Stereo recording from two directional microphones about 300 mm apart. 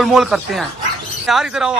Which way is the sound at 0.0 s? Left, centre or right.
Centre.